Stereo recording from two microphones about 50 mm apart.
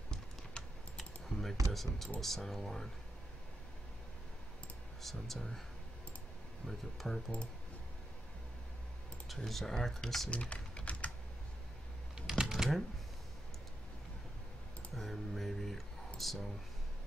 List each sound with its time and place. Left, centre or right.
0.9 s typing: centre
1.7 s speech: centre
5.0 s speech: centre
6.6 s speech: centre
9.3 s speech: centre
10.3 s typing: left
12.2 s typing: centre
15.0 s speech: centre